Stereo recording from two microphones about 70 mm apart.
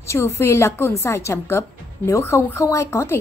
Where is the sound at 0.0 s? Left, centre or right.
Left.